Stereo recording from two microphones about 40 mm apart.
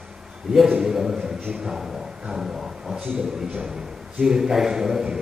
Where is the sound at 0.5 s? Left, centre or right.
Centre.